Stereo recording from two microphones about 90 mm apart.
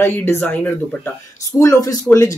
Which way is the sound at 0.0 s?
25° left (ahead or behind).